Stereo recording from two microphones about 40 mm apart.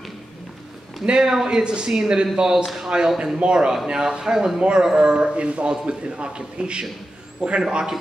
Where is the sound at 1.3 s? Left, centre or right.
Centre.